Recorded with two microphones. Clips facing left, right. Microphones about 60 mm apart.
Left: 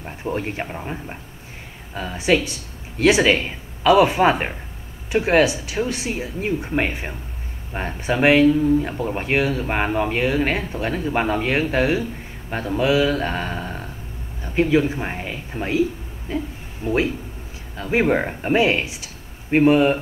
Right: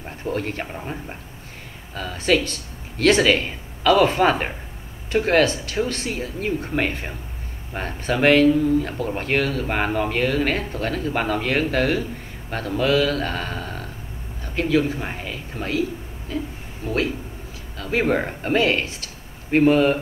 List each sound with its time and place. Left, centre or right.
0.0 s speech: centre